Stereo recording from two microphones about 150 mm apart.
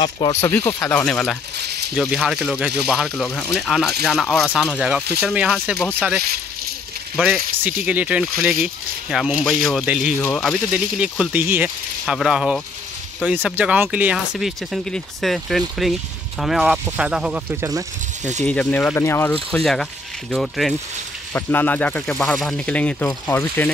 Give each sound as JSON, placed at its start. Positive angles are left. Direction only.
{"t": 0.3, "sound": "speech", "side_deg": 15}
{"t": 1.6, "sound": "a sound", "side_deg": -90}
{"t": 2.0, "sound": "speech", "side_deg": -5}
{"t": 10.7, "sound": "speech", "side_deg": -10}
{"t": 18.4, "sound": "speech", "side_deg": 10}
{"t": 19.5, "sound": "speech", "side_deg": 0}
{"t": 21.3, "sound": "speech", "side_deg": 15}